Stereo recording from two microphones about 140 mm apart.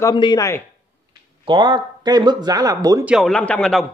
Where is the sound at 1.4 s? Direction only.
35° right (ahead or behind).